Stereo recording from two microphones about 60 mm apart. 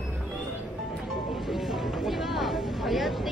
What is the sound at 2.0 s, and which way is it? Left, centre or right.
Speech, centre.